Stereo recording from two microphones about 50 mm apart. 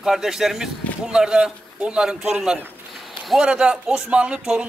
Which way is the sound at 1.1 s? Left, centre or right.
Centre.